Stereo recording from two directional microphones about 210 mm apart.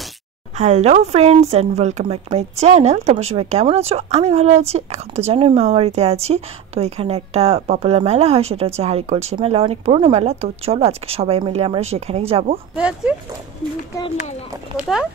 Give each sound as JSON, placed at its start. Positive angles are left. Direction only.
{"t": 0.6, "sound": "a woman's voice", "side_deg": -35}
{"t": 12.7, "sound": "speech", "side_deg": -5}
{"t": 13.9, "sound": "speech", "side_deg": 25}